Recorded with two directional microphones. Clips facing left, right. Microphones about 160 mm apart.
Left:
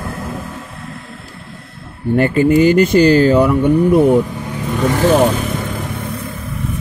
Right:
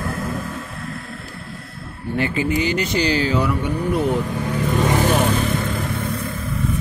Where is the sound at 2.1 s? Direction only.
50° left (ahead or behind).